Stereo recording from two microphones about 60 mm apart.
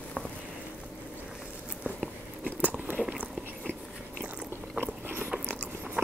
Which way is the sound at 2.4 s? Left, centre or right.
Right.